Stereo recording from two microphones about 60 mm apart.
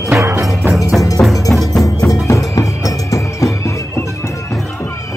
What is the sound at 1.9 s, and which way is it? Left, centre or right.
Music, left.